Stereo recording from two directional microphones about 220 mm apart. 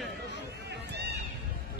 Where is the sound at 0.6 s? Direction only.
50° right (ahead or behind).